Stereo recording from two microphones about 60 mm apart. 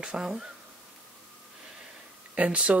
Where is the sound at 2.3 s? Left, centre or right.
Right.